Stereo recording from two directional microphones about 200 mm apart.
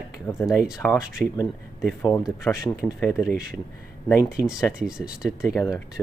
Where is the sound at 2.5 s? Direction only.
15° left (ahead or behind).